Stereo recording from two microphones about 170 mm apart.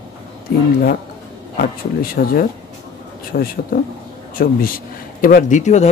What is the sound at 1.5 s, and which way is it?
Speech, 60° left (ahead or behind).